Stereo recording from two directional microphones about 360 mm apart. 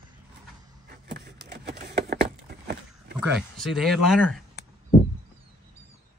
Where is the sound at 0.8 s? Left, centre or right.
Right.